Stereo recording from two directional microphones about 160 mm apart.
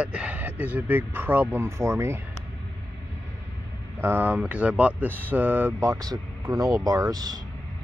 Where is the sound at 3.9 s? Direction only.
15° right (ahead or behind).